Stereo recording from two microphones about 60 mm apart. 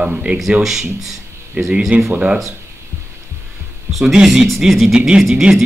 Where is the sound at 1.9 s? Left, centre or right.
Right.